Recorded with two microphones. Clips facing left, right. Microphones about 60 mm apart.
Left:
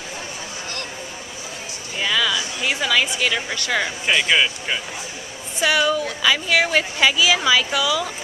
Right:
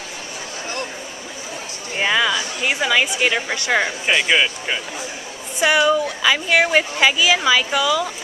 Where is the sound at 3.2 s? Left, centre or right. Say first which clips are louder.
Right 3 dB; centre.